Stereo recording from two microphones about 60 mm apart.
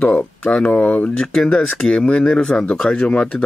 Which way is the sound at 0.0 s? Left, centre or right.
Centre.